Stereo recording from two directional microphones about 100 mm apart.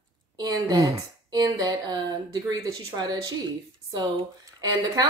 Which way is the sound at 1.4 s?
45° right (ahead or behind).